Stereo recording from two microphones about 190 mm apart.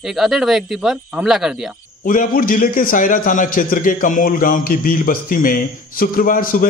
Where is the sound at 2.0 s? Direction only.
45° left (ahead or behind).